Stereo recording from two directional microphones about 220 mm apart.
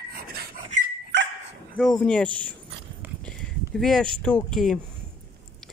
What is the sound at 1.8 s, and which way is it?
Speech, centre (ahead or behind).